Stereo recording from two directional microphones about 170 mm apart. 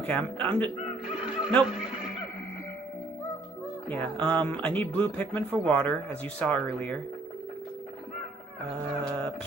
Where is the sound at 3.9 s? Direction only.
10° left (ahead or behind).